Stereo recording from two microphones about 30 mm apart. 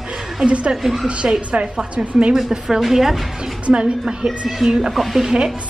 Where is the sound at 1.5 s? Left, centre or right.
Right.